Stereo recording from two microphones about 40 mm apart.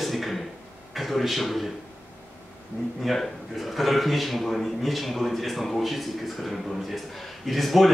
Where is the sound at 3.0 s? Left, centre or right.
Centre.